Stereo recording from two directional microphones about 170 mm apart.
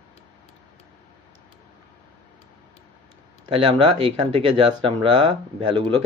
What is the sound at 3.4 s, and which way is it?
Speech, 30° right (ahead or behind).